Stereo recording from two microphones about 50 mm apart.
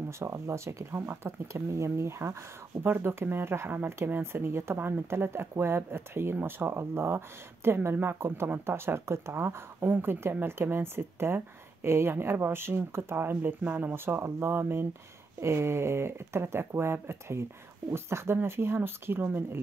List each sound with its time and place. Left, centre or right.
0.2 s speech: right
2.8 s speech: right
4.7 s speech: right
5.1 s speech: right
9.8 s speech: right
13.9 s speech: right
15.4 s speech: right